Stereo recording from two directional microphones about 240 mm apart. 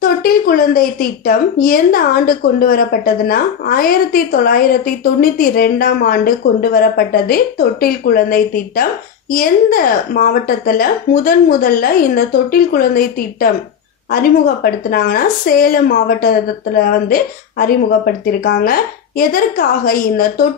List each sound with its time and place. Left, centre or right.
0.0 s a woman's voice: left